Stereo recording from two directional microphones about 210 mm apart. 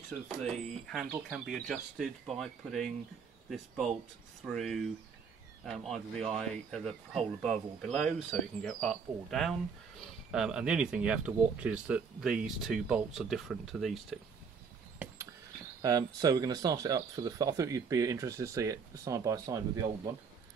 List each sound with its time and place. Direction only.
0.4 s speech: centre (ahead or behind)
15.8 s speech: 15° right (ahead or behind)